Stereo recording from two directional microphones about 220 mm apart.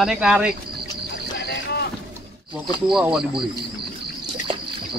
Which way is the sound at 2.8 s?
Centre (ahead or behind).